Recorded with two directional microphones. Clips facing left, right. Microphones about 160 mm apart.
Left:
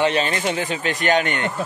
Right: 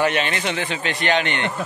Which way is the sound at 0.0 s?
35° left (ahead or behind).